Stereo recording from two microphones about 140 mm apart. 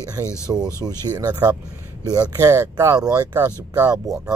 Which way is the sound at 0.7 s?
30° right (ahead or behind).